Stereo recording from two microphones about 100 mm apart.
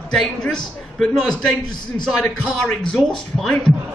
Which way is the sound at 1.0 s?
5° left (ahead or behind).